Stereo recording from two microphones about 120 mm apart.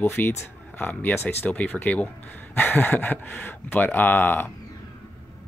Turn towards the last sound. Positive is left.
turn(degrees=15)  # may be behind; listen again after turning